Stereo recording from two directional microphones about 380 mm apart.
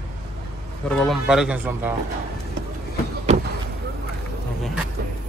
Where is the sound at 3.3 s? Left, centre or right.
Centre.